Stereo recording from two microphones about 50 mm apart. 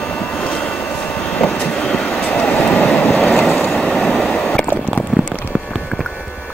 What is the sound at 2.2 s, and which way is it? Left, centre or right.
Vehicle, left.